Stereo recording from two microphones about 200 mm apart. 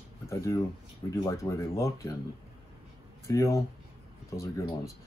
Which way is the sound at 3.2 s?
15° left (ahead or behind).